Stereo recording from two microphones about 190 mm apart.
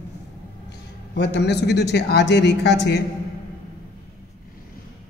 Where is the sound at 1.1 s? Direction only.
65° left (ahead or behind).